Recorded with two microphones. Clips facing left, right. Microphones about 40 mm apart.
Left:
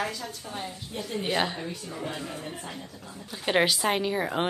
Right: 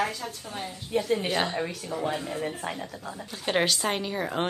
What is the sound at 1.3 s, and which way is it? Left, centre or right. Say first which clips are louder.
Speech: even; centre.